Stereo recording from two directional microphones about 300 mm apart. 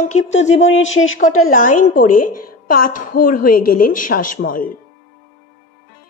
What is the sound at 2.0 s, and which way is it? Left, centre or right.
A woman's voice, left.